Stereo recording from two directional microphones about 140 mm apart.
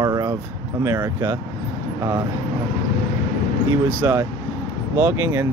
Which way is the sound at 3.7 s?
15° right (ahead or behind).